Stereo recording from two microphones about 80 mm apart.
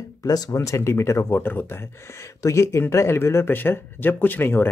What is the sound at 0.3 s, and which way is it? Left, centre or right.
Speech, left.